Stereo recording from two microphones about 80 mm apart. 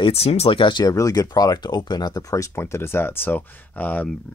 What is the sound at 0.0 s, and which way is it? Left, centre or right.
Speech, left.